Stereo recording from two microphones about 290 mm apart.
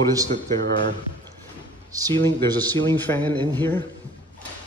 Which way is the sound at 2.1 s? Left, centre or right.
Centre.